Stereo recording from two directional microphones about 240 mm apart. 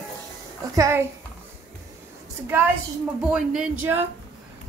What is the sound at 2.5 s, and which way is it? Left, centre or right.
Speech, centre.